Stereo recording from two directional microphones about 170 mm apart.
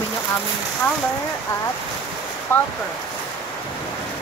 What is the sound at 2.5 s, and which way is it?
Speech, 15° left (ahead or behind).